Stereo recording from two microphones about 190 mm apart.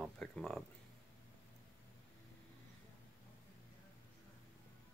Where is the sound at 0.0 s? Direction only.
Centre (ahead or behind).